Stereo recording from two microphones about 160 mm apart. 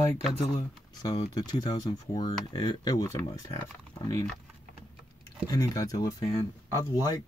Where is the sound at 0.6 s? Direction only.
25° left (ahead or behind).